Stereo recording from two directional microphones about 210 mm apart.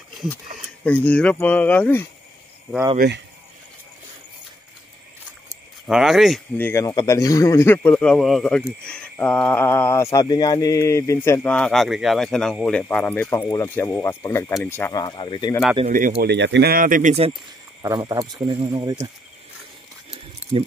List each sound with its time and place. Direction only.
0.8 s speech: 5° left (ahead or behind)
5.9 s speech: centre (ahead or behind)
6.7 s speech: 15° left (ahead or behind)
15.8 s speech: 35° right (ahead or behind)
17.8 s speech: 15° right (ahead or behind)